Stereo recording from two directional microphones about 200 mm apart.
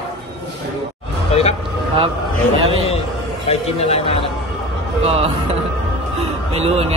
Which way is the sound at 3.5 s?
30° left (ahead or behind).